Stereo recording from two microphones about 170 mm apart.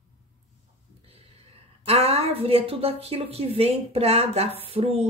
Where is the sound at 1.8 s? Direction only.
35° right (ahead or behind).